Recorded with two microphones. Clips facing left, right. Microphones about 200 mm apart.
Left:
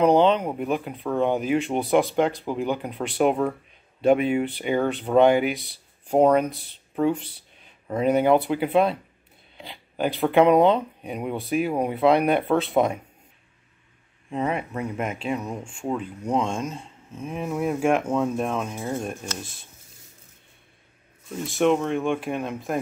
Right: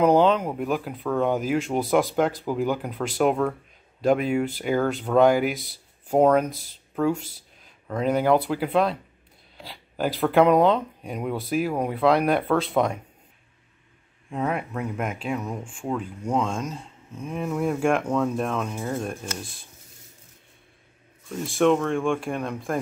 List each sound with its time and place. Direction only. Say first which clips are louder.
0.0 s speech: even; 5° right (ahead or behind)
14.3 s speech: left 1 dB; centre (ahead or behind)
18.8 s speech: even; 20° left (ahead or behind)
21.7 s speech: even; 5° left (ahead or behind)